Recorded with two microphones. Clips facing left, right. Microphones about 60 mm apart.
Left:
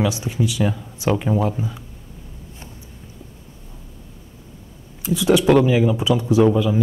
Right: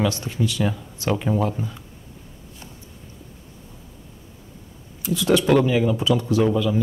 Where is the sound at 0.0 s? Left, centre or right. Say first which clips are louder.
Left 2 dB; centre.